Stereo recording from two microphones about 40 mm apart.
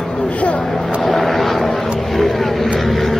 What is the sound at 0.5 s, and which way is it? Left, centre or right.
Vehicle, centre.